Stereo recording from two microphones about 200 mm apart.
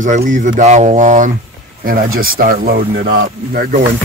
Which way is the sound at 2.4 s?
45° right (ahead or behind).